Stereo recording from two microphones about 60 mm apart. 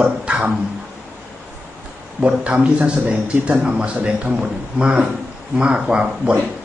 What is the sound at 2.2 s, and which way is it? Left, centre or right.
Speech, centre.